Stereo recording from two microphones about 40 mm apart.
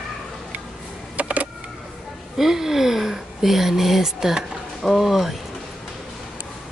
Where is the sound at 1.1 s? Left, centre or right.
Right.